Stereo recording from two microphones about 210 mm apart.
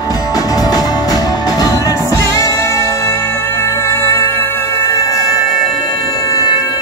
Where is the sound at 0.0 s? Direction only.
15° left (ahead or behind).